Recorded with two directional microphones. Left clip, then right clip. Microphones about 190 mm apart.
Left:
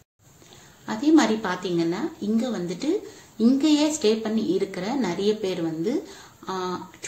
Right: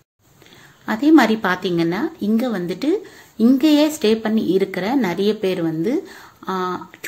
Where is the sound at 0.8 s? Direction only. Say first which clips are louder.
Right 6 dB; 45° right (ahead or behind).